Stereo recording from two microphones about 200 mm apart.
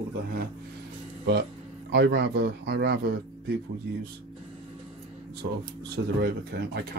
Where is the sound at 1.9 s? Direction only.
55° right (ahead or behind).